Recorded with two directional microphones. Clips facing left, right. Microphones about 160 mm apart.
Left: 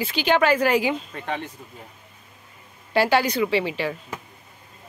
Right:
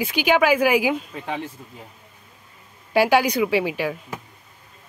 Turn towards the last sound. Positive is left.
turn(degrees=-5)  # may be behind; listen again after turning